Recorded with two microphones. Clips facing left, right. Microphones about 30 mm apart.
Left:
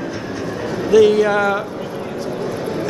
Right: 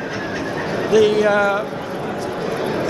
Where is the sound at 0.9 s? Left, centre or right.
Centre.